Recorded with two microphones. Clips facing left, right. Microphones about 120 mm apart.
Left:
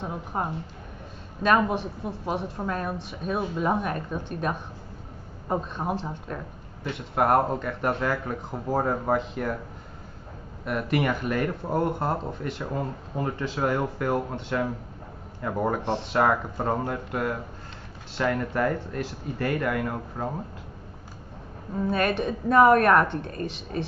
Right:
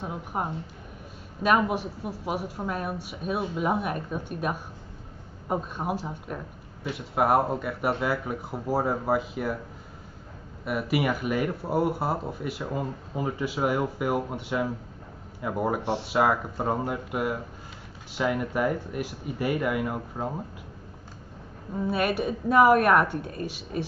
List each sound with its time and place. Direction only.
0.0 s speech: 10° right (ahead or behind)
1.7 s speech: 10° right (ahead or behind)
10.6 s speech: 5° right (ahead or behind)
21.7 s speech: 10° right (ahead or behind)